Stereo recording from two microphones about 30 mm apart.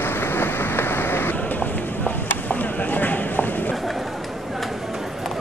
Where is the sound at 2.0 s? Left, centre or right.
Left.